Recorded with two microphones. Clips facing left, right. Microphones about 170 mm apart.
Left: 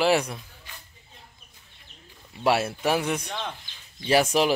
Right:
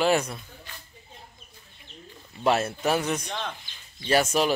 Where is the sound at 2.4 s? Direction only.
5° left (ahead or behind).